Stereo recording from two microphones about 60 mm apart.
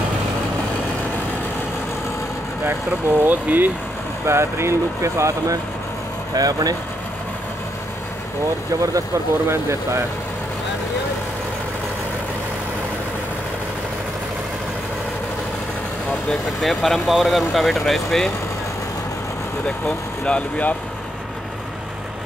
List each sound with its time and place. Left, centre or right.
2.6 s speech: right
4.3 s speech: right
6.3 s speech: right
9.5 s speech: right
16.3 s speech: centre
20.2 s speech: left